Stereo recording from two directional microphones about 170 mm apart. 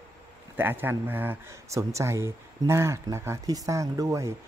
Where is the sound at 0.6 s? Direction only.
10° right (ahead or behind).